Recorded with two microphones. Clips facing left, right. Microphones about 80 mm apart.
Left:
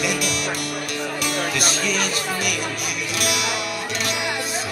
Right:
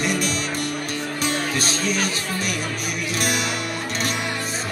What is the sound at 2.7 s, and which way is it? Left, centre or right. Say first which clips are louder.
Music: right 1 dB; right.